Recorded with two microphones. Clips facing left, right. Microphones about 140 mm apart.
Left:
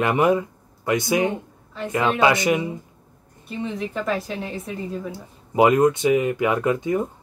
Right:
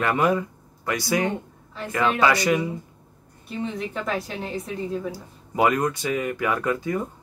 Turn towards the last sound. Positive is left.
turn(degrees=20)  # may be behind; listen again after turning